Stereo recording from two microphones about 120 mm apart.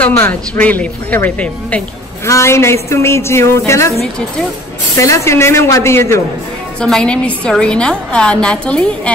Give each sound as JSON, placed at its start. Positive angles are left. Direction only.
{"t": 0.1, "sound": "a woman's voice", "side_deg": 15}
{"t": 2.2, "sound": "a woman's voice", "side_deg": 25}
{"t": 4.9, "sound": "a woman's voice", "side_deg": 25}
{"t": 6.8, "sound": "a woman's voice", "side_deg": 10}